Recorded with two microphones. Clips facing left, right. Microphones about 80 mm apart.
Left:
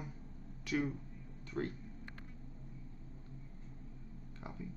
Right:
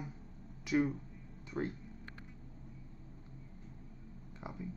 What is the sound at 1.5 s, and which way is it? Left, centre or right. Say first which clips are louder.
Speech: right 1 dB; centre.